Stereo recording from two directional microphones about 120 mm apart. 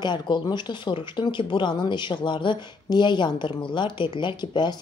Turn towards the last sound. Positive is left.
turn(degrees=40)  # may be behind; listen again after turning